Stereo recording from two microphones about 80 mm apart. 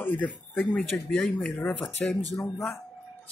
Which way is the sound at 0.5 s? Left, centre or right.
Centre.